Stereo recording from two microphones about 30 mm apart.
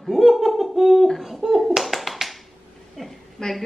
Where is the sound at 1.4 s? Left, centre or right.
Centre.